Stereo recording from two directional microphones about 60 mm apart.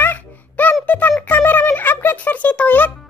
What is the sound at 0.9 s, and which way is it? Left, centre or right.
Speech, left.